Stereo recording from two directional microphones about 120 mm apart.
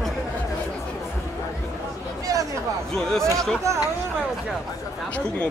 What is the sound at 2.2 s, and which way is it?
Chatter, 30° right (ahead or behind).